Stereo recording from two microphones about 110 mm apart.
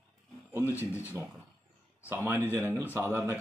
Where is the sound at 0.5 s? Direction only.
20° right (ahead or behind).